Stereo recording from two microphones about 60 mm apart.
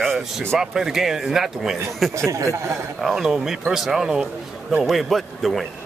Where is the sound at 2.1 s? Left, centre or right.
Right.